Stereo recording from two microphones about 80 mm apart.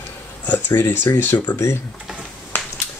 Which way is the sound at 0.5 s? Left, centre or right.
Left.